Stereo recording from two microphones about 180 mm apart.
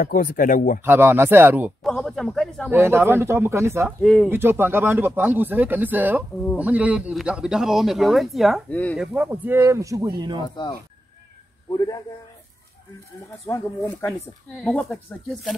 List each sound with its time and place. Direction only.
0.0 s speech: 50° left (ahead or behind)
0.8 s speech: 10° right (ahead or behind)
1.8 s speech: 5° left (ahead or behind)
2.7 s speech: 15° right (ahead or behind)
4.0 s speech: 5° left (ahead or behind)
4.3 s speech: 10° right (ahead or behind)
10.5 s speech: 25° left (ahead or behind)
13.5 s speech: 15° left (ahead or behind)
14.6 s speech: 5° left (ahead or behind)